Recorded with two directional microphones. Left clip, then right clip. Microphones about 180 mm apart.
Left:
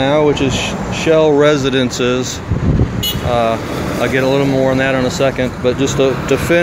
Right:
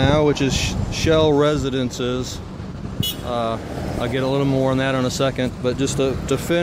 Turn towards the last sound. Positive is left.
turn(degrees=-20)  # may be behind; listen again after turning